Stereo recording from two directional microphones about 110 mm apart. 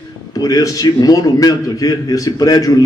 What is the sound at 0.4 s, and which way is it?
A man's voice, 35° left (ahead or behind).